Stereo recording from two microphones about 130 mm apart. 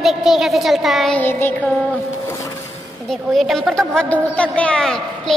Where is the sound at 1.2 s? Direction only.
15° left (ahead or behind).